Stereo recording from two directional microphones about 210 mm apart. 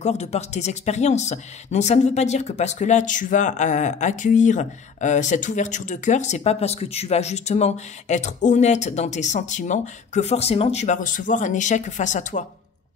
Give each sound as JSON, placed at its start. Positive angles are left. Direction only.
{"t": 0.0, "sound": "speech", "side_deg": 30}